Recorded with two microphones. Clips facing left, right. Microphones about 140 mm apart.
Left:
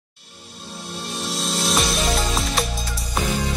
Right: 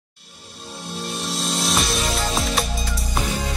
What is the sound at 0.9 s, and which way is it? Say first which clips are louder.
Music: right 1 dB; centre (ahead or behind).